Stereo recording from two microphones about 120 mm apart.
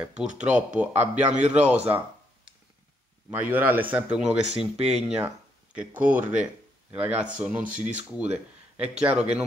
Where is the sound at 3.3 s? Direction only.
15° right (ahead or behind).